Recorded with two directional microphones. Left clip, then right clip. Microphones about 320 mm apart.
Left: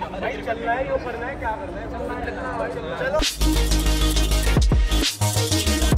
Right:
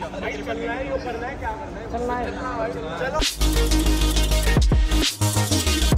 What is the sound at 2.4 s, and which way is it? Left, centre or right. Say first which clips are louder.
Music: even; centre.